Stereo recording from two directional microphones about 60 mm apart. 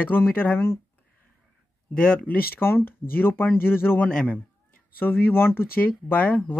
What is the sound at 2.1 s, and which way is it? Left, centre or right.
Speech, left.